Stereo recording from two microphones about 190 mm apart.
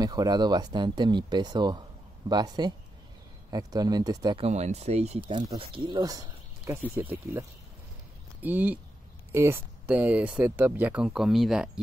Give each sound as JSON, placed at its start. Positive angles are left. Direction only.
{"t": 0.0, "sound": "speech", "side_deg": -20}
{"t": 4.5, "sound": "speech", "side_deg": -35}